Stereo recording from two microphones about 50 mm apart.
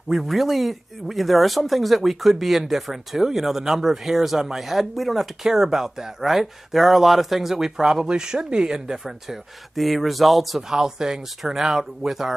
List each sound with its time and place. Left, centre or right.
0.1 s speech: centre
10.8 s speech: centre